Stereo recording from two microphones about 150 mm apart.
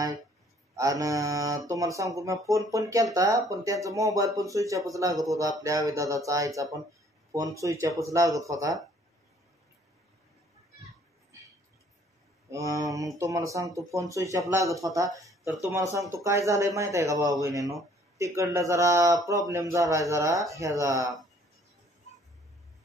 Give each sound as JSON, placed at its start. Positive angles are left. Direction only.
{"t": 0.7, "sound": "speech", "side_deg": -20}
{"t": 12.4, "sound": "speech", "side_deg": -20}